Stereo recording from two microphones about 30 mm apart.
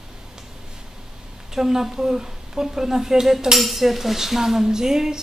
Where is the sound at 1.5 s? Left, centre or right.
Centre.